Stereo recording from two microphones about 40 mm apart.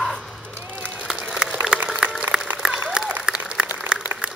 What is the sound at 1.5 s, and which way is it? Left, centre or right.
Applause, right.